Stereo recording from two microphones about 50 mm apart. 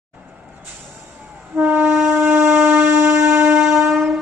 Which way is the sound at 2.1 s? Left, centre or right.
Right.